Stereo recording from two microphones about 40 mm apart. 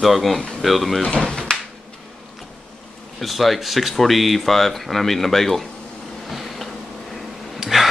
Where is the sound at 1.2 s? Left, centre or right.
Left.